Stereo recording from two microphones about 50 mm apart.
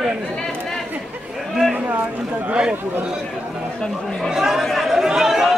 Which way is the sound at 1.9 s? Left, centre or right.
Right.